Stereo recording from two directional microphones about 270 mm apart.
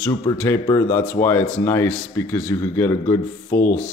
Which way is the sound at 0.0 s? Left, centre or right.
Centre.